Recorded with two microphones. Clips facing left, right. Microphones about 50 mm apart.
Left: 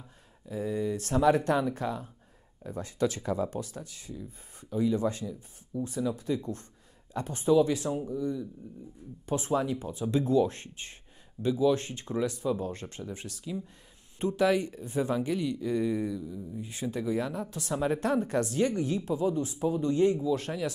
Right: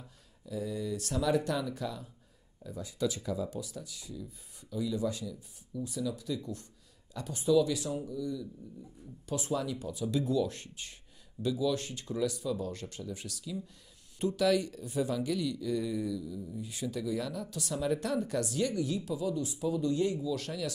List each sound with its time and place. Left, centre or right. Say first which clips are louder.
0.5 s speech: left 4 dB; left